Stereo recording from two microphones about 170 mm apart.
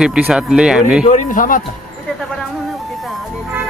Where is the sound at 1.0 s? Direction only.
50° left (ahead or behind).